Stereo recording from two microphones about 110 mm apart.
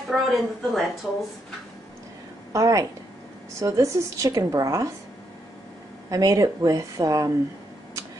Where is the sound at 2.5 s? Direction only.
30° right (ahead or behind).